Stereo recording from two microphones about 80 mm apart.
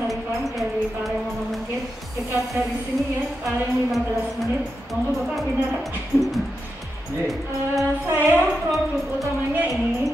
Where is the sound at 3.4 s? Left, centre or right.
Centre.